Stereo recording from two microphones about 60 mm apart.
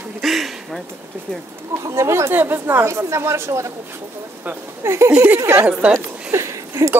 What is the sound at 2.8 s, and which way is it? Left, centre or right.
Speech, right.